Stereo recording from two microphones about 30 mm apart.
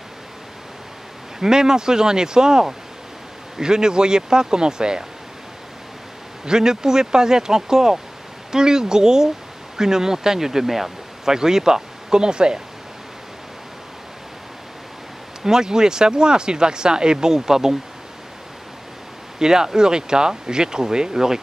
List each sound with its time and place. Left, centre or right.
1.4 s speech: centre
6.4 s speech: right
15.4 s speech: right
19.3 s speech: centre